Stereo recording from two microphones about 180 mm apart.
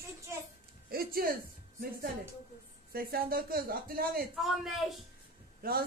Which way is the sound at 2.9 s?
55° right (ahead or behind).